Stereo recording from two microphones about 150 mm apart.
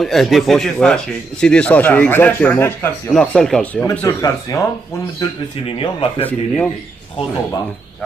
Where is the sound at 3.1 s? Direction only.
5° left (ahead or behind).